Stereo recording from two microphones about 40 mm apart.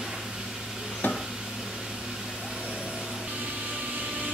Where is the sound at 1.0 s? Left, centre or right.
Left.